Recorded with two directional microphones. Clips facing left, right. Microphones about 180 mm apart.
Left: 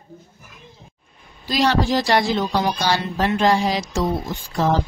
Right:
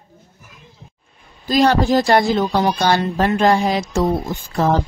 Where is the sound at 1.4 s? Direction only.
50° right (ahead or behind).